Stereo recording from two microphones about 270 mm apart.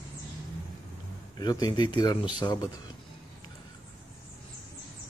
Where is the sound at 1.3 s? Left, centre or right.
Centre.